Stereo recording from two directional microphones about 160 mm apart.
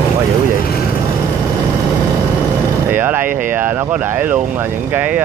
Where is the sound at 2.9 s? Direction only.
10° right (ahead or behind).